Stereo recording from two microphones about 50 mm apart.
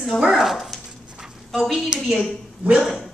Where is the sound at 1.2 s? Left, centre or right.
Centre.